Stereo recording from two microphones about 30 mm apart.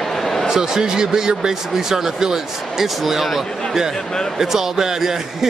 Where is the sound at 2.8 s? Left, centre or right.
Centre.